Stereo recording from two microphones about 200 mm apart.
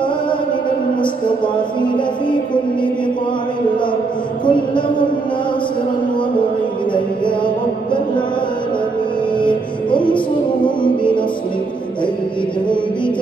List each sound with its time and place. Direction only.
4.5 s a sound: 25° left (ahead or behind)
6.9 s music: 25° left (ahead or behind)
9.8 s music: 25° left (ahead or behind)